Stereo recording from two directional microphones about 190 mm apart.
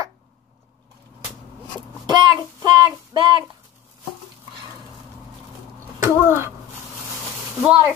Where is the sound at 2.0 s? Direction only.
25° right (ahead or behind).